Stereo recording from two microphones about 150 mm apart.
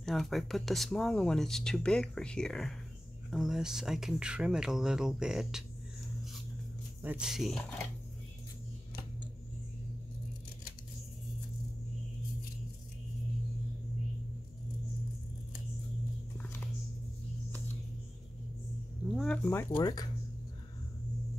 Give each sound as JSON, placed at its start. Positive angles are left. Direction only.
{"t": 0.0, "sound": "speech", "side_deg": 0}
{"t": 7.0, "sound": "speech", "side_deg": -10}
{"t": 16.3, "sound": "music", "side_deg": 10}
{"t": 19.0, "sound": "speech", "side_deg": 0}
{"t": 19.8, "sound": "speech", "side_deg": 25}